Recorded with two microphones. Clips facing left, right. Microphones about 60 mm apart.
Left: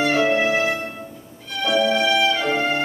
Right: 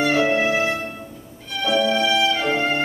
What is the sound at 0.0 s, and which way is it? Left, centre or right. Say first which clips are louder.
Music: even; centre.